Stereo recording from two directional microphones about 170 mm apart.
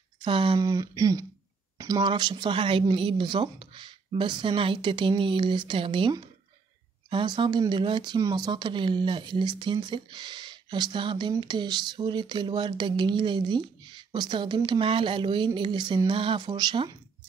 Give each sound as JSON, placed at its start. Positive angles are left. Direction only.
{"t": 0.2, "sound": "speech", "side_deg": -30}